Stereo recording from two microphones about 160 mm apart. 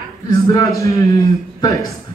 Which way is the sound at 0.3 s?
20° left (ahead or behind).